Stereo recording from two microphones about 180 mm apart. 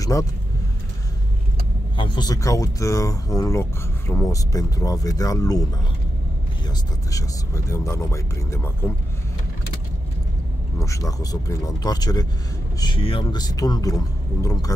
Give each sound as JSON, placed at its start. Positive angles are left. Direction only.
{"t": 0.0, "sound": "speech", "side_deg": 20}
{"t": 2.0, "sound": "speech", "side_deg": 20}
{"t": 7.1, "sound": "speech", "side_deg": 20}
{"t": 10.8, "sound": "speech", "side_deg": 20}